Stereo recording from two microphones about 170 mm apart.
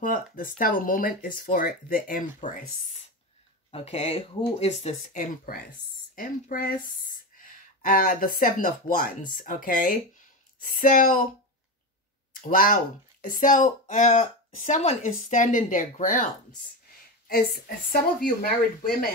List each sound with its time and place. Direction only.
0.0 s speech: 55° left (ahead or behind)
3.7 s speech: 40° left (ahead or behind)
12.4 s speech: 55° left (ahead or behind)
17.3 s speech: 60° left (ahead or behind)